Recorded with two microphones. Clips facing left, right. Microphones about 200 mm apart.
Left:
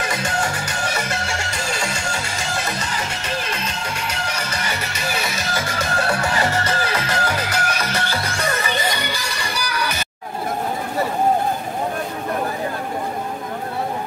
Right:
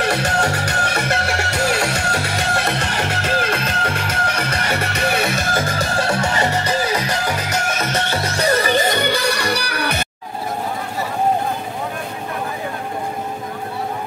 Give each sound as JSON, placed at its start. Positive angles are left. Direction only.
{"t": 0.0, "sound": "music", "side_deg": -65}